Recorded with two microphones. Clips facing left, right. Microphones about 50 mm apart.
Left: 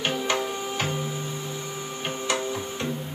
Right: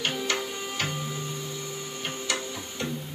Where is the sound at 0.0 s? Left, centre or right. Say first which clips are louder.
Left 3 dB; left.